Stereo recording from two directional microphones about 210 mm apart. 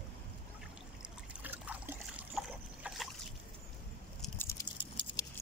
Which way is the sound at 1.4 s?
10° right (ahead or behind).